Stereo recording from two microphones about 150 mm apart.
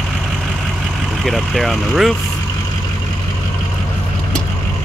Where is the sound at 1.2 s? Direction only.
Centre (ahead or behind).